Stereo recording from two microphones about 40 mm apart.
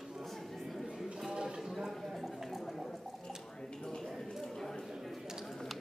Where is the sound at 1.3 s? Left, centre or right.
Centre.